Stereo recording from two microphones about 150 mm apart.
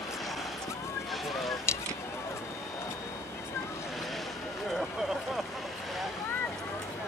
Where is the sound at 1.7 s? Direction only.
20° left (ahead or behind).